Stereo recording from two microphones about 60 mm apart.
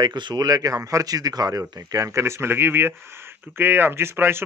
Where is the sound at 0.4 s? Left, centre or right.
Right.